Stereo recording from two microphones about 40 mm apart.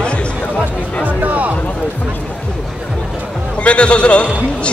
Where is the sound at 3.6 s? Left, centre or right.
Left.